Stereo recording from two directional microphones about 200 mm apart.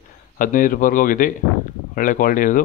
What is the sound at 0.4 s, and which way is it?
Speech, 40° left (ahead or behind).